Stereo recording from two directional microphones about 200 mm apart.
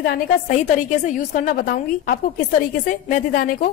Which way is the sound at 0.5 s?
35° left (ahead or behind).